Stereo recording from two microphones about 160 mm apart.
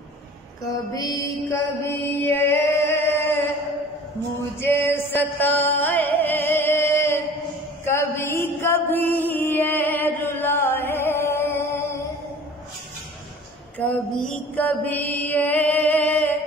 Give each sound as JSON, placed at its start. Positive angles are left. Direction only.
{"t": 0.7, "sound": "mantra", "side_deg": 20}
{"t": 4.6, "sound": "music", "side_deg": 15}
{"t": 7.8, "sound": "a sound", "side_deg": 15}
{"t": 8.4, "sound": "music", "side_deg": 15}
{"t": 13.7, "sound": "mantra", "side_deg": 10}